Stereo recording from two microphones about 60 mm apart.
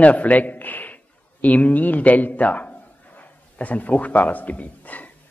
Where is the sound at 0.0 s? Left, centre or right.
Left.